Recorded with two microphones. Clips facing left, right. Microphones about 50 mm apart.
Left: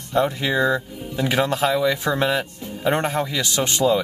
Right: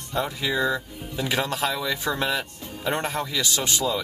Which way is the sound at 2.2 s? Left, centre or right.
Centre.